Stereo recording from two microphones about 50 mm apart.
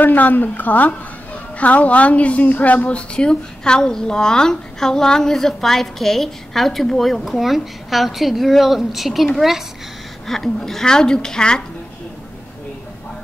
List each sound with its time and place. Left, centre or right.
0.0 s a woman's voice: left
3.2 s a woman's voice: centre